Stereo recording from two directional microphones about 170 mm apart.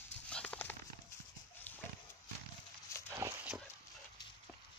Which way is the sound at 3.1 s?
15° right (ahead or behind).